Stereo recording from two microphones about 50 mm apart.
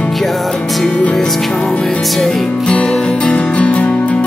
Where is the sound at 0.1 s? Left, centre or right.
Centre.